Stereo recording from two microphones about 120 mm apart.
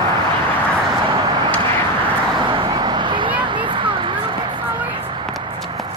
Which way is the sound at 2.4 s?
40° right (ahead or behind).